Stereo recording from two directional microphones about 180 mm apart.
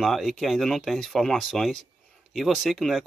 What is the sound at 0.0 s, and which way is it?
Speech, centre (ahead or behind).